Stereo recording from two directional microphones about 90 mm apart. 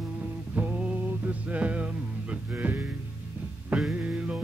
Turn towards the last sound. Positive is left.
turn(degrees=-15)  # may be behind; listen again after turning